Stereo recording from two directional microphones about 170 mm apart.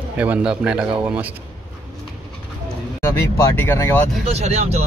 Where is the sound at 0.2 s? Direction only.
5° right (ahead or behind).